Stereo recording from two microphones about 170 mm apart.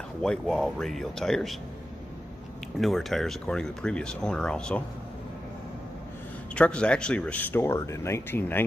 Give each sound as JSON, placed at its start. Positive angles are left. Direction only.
{"t": 0.2, "sound": "speech", "side_deg": 0}
{"t": 2.8, "sound": "speech", "side_deg": 0}
{"t": 6.5, "sound": "speech", "side_deg": 5}